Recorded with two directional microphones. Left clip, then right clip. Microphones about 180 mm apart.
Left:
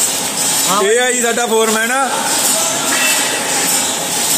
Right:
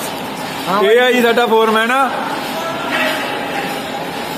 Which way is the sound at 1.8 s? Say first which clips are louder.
Right 2 dB; 20° left (ahead or behind).